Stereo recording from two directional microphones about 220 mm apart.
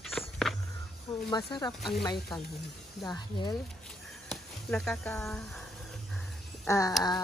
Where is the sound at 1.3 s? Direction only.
20° left (ahead or behind).